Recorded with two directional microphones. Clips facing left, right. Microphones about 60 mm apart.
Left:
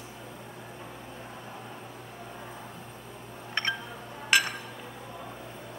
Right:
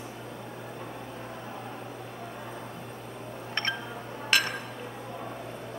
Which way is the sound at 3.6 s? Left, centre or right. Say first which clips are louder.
Left 1 dB; centre.